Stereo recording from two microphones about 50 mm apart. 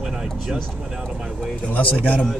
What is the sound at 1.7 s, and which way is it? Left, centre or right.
Speech, left.